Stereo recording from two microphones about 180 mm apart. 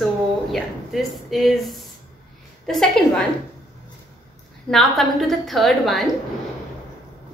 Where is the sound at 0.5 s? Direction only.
Centre (ahead or behind).